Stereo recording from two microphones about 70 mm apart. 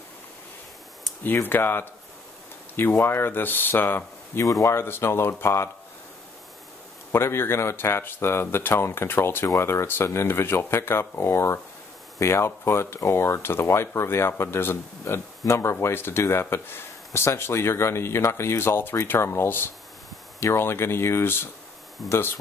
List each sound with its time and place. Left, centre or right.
1.2 s speech: left
4.4 s speech: left
4.7 s speech: left
7.1 s speech: left
22.0 s speech: centre